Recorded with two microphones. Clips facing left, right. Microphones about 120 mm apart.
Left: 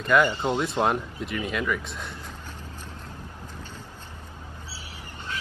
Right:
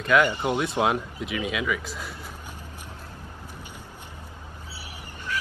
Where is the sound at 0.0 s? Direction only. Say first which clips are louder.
Even; centre (ahead or behind).